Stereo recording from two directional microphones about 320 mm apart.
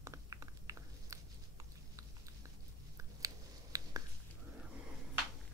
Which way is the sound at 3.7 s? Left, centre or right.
Centre.